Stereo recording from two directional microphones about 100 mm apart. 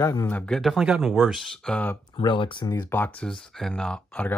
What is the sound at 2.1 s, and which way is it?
Speech, 55° left (ahead or behind).